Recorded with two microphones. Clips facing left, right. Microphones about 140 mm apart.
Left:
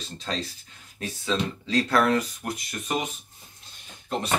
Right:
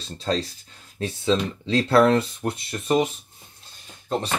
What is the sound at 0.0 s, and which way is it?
Speech, 35° right (ahead or behind).